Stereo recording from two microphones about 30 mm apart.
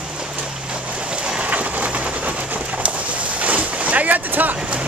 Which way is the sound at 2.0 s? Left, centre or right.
Right.